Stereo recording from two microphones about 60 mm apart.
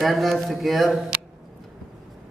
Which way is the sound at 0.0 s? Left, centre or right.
Centre.